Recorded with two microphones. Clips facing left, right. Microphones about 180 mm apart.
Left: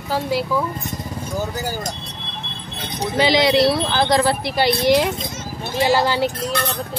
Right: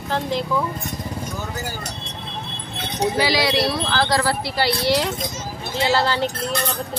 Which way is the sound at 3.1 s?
20° left (ahead or behind).